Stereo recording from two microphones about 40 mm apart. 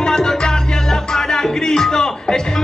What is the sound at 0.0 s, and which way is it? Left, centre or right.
Music, centre.